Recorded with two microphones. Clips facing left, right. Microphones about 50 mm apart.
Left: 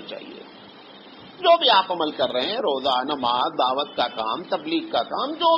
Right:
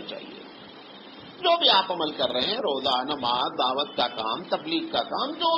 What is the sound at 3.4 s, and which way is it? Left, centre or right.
Speech, left.